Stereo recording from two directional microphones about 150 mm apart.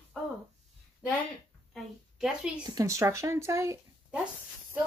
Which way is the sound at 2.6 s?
25° right (ahead or behind).